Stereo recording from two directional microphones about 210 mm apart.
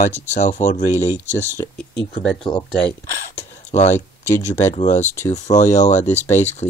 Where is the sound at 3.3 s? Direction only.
30° left (ahead or behind).